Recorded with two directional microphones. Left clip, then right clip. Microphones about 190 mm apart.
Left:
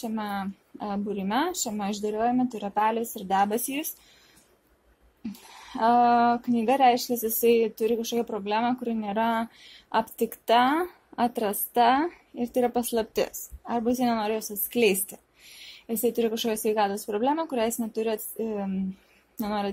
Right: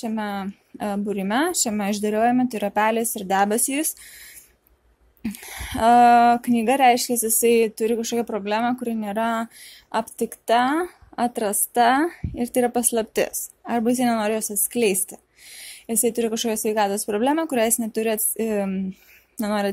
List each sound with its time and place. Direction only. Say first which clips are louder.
0.0 s speech: right 4 dB; 25° right (ahead or behind)
5.2 s speech: right 9 dB; 35° right (ahead or behind)
14.7 s speech: right 1 dB; 15° right (ahead or behind)